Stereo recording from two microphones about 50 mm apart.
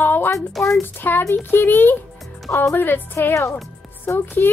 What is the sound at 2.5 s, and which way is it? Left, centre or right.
Speech, left.